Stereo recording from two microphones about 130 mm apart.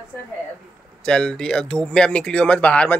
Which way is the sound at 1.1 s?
5° left (ahead or behind).